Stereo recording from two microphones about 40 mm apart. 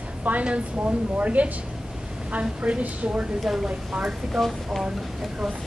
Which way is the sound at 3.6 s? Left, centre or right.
Right.